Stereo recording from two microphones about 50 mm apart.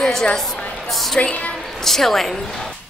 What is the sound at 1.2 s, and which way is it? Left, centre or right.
Speech, left.